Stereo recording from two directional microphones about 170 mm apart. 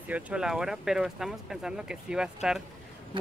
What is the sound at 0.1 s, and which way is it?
Speech, 5° right (ahead or behind).